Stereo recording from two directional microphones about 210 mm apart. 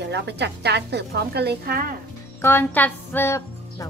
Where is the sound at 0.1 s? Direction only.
55° right (ahead or behind).